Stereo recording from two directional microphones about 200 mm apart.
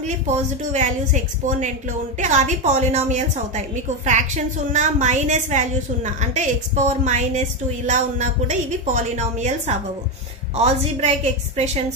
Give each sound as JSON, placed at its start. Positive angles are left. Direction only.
{"t": 0.7, "sound": "a woman's voice", "side_deg": -35}